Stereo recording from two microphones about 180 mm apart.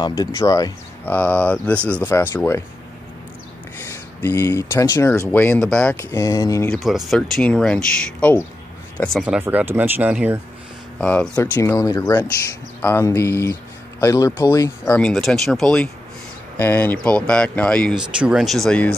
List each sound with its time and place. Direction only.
0.0 s speech: 25° left (ahead or behind)
3.9 s speech: 15° left (ahead or behind)
6.7 s speech: centre (ahead or behind)
9.2 s speech: 5° right (ahead or behind)
11.0 s speech: 5° left (ahead or behind)
15.0 s speech: 5° left (ahead or behind)